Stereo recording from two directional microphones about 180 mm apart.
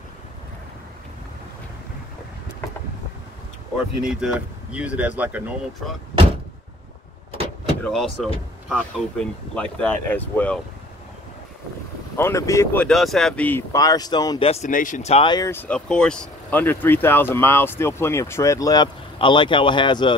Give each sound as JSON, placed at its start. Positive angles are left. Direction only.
{"t": 4.0, "sound": "speech", "side_deg": -5}
{"t": 7.8, "sound": "speech", "side_deg": 0}
{"t": 12.2, "sound": "speech", "side_deg": 15}
{"t": 12.8, "sound": "speech", "side_deg": 0}
{"t": 14.5, "sound": "speech", "side_deg": 45}
{"t": 15.5, "sound": "speech", "side_deg": 10}